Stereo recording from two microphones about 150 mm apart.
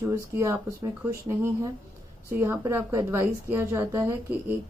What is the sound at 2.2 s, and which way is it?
Mantra, 20° right (ahead or behind).